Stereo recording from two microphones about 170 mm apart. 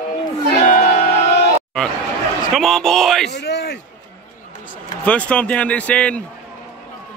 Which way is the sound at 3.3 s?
85° left.